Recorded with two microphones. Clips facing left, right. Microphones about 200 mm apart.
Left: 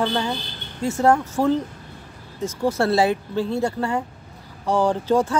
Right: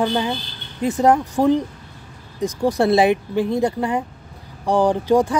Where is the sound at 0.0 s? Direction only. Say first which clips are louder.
Right 3 dB; 15° right (ahead or behind).